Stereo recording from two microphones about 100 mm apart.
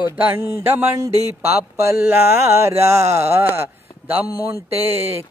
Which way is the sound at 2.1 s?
25° right (ahead or behind).